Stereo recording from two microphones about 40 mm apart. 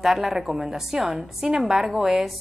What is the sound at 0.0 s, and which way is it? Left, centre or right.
A woman's voice, centre.